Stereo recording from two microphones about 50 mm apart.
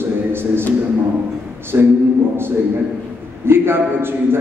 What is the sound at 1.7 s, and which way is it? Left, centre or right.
Speech, right.